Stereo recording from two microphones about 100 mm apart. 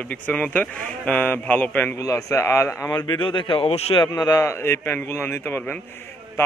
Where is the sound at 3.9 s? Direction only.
45° left (ahead or behind).